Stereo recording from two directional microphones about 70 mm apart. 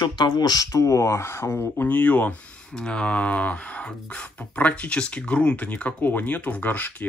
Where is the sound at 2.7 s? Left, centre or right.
Centre.